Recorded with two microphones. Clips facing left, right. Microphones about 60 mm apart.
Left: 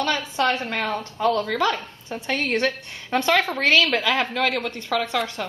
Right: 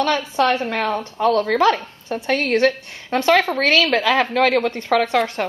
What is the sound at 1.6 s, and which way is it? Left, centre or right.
Speech, right.